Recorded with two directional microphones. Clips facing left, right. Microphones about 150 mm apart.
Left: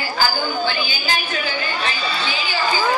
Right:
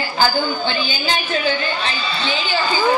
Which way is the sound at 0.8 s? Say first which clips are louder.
Right 3 dB; 25° right (ahead or behind).